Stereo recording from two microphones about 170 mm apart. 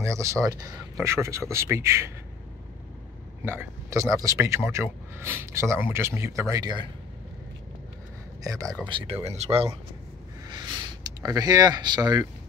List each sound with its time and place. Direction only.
0.0 s speech: 15° right (ahead or behind)
3.4 s speech: 15° right (ahead or behind)
8.5 s speech: 20° right (ahead or behind)
8.8 s speech: 30° right (ahead or behind)
10.5 s a sound: 25° right (ahead or behind)